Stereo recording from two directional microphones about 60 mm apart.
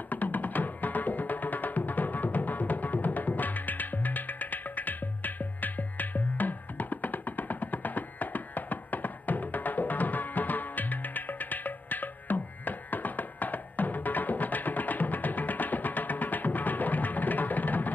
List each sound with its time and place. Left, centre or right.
0.1 s music: left